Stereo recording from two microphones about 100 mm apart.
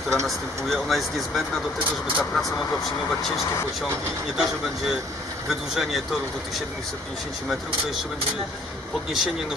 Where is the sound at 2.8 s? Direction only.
Centre (ahead or behind).